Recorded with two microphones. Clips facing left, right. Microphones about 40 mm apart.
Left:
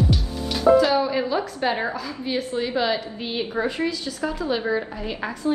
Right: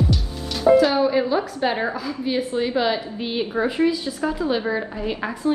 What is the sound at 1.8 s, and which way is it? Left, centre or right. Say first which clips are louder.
A woman's voice: right 3 dB; centre.